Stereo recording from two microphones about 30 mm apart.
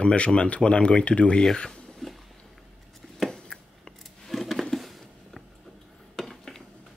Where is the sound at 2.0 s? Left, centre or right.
Centre.